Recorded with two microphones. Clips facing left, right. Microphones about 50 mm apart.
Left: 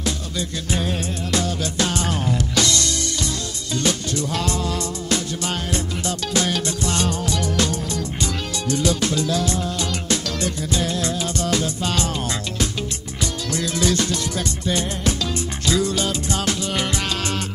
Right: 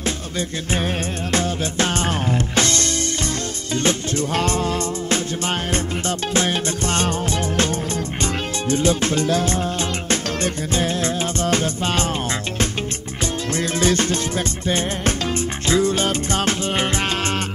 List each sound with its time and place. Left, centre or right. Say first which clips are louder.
0.0 s music: right 1 dB; right
13.2 s music: right 2 dB; right